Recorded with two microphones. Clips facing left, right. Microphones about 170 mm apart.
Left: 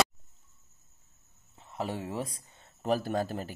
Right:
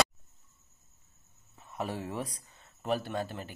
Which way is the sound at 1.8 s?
25° left (ahead or behind).